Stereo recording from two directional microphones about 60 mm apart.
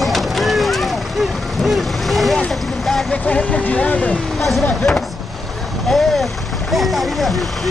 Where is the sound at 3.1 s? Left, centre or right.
Left.